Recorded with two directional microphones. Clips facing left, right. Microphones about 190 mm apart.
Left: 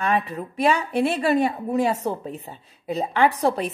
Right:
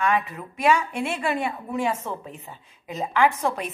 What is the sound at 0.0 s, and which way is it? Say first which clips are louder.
A woman's voice: left 1 dB; 35° left (ahead or behind).